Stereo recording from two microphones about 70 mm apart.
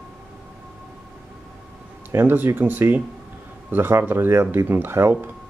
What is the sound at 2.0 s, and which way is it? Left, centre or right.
Speech, right.